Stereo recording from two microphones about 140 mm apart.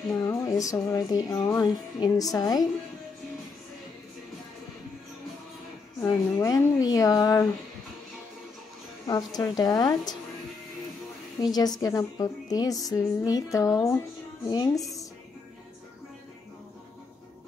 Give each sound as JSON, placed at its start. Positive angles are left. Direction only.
{"t": 0.1, "sound": "speech", "side_deg": 25}
{"t": 5.9, "sound": "speech", "side_deg": 25}
{"t": 9.0, "sound": "speech", "side_deg": 25}
{"t": 11.4, "sound": "speech", "side_deg": 30}